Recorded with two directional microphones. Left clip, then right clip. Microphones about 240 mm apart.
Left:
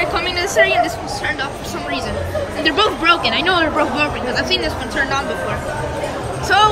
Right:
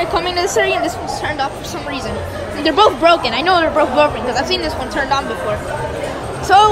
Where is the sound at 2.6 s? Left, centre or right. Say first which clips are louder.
Right 4 dB; centre.